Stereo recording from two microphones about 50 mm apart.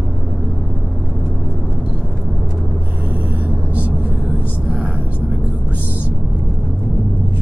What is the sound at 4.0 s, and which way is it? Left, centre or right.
Vehicle, right.